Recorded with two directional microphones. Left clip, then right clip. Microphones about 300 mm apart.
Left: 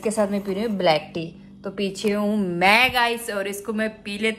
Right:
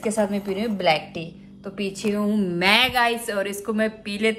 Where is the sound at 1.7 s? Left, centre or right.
Left.